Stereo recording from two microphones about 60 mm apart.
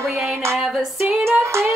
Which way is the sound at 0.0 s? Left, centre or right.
Right.